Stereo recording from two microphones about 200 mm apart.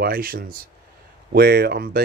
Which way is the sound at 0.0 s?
45° right (ahead or behind).